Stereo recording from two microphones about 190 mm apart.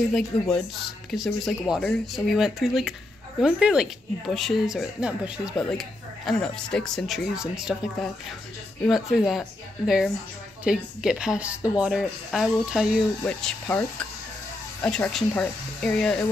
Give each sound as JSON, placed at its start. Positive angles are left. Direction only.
{"t": 0.3, "sound": "speech", "side_deg": 5}